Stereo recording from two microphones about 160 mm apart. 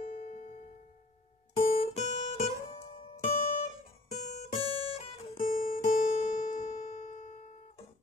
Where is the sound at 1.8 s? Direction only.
45° left (ahead or behind).